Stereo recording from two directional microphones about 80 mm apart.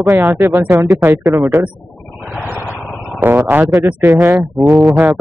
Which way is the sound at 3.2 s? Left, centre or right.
Right.